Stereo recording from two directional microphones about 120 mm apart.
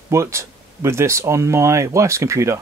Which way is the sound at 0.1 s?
25° right (ahead or behind).